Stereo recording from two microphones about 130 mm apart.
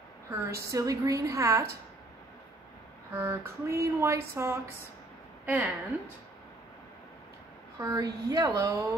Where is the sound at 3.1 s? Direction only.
20° right (ahead or behind).